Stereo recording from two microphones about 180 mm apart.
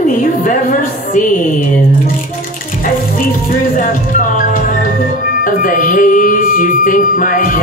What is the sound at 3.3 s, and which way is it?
Speech, 50° left (ahead or behind).